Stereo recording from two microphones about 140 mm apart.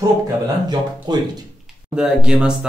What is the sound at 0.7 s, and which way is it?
Speech, 30° right (ahead or behind).